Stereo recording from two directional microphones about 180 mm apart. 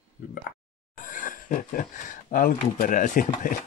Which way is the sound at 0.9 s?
50° left (ahead or behind).